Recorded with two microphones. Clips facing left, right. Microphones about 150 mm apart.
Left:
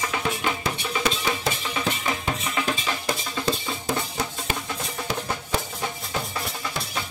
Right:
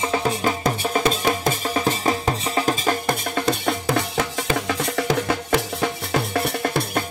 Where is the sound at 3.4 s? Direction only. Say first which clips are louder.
Right 4 dB; 75° right (ahead or behind).